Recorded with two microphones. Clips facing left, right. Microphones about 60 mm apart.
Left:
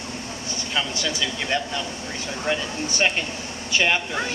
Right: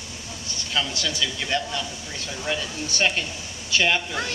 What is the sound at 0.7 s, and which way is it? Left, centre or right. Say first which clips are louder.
Speech: even; centre.